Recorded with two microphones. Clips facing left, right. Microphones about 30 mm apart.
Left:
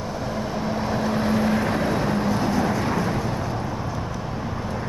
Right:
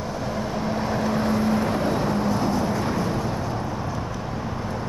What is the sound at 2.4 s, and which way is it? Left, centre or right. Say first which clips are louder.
Vehicle: left 1 dB; left.